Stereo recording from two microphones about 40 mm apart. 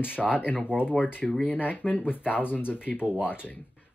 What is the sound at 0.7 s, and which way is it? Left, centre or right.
Speech, right.